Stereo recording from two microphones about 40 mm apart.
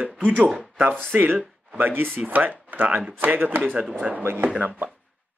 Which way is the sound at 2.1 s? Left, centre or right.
Right.